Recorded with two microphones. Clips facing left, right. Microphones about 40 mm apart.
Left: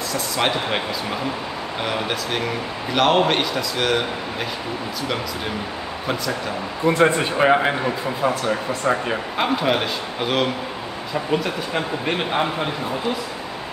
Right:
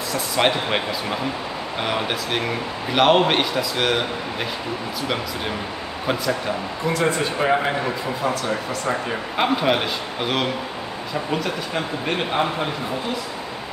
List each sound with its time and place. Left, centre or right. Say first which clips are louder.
0.1 s a man's voice: right 2 dB; centre
6.9 s a man's voice: left 4 dB; left
9.4 s speech: right 1 dB; centre